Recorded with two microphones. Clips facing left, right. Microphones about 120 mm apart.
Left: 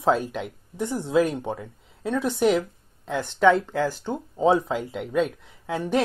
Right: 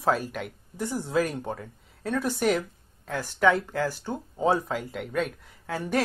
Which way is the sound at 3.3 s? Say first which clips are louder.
Left 4 dB; centre (ahead or behind).